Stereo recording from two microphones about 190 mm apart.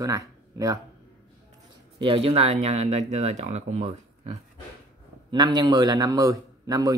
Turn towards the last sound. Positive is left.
turn(degrees=-20)  # may be behind; listen again after turning